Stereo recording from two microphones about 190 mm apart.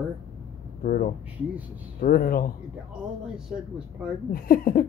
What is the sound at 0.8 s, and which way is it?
Speech, 45° left (ahead or behind).